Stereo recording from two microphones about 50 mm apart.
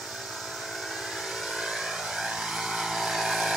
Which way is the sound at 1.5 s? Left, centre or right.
Centre.